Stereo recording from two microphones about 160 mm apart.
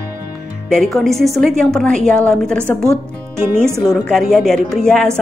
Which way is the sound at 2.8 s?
15° right (ahead or behind).